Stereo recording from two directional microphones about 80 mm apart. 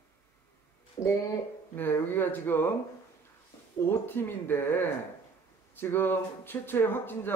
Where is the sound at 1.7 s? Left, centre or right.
Left.